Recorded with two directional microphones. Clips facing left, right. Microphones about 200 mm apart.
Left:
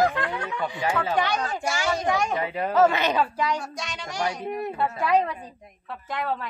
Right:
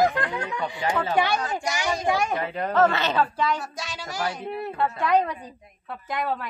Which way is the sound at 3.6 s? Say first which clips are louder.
Even; 5° right (ahead or behind).